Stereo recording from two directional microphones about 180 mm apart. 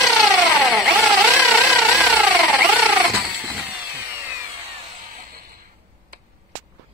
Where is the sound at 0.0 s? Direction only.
Centre (ahead or behind).